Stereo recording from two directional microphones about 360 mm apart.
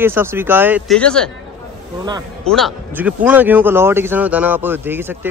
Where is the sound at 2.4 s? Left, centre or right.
Centre.